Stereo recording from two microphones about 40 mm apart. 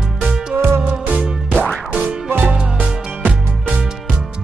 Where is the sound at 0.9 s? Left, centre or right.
Right.